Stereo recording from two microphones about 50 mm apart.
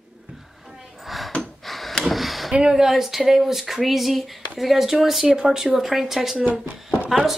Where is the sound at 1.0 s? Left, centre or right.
Centre.